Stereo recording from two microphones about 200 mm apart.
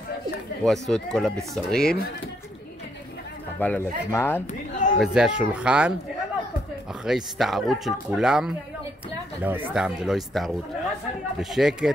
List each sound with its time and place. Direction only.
0.7 s speech: centre (ahead or behind)
3.5 s speech: 10° left (ahead or behind)
4.5 s a woman's voice: 40° left (ahead or behind)
5.0 s speech: 5° right (ahead or behind)